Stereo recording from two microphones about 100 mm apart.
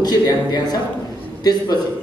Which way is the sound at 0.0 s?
45° left (ahead or behind).